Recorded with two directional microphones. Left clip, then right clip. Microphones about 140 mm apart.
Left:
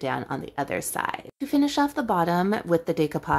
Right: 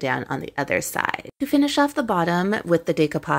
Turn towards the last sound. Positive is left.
turn(degrees=-15)  # may be behind; listen again after turning